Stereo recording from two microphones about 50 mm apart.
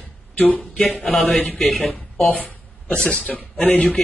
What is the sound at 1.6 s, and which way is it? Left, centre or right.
Speech, centre.